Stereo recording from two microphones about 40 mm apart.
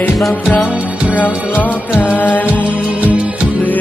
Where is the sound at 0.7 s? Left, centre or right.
Right.